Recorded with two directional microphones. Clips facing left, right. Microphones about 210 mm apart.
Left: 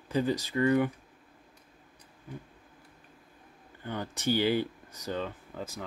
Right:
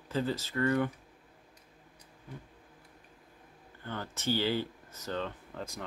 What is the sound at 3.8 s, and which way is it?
Speech, 15° left (ahead or behind).